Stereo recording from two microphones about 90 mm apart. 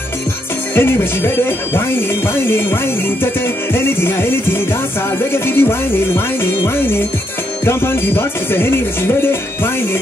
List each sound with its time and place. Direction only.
0.7 s music: 25° left (ahead or behind)